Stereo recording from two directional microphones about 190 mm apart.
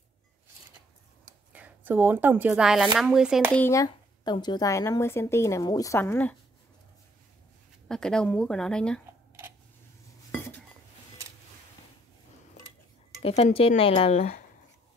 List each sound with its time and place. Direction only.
1.5 s speech: 10° right (ahead or behind)
3.5 s speech: 15° left (ahead or behind)
7.9 s speech: 5° left (ahead or behind)
10.3 s dishes: 10° left (ahead or behind)
13.2 s speech: 35° left (ahead or behind)